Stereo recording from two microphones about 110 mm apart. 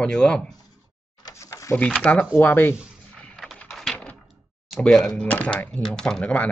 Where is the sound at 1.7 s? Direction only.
10° left (ahead or behind).